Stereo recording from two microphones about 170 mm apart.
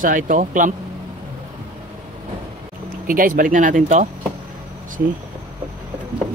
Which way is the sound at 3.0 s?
55° right (ahead or behind).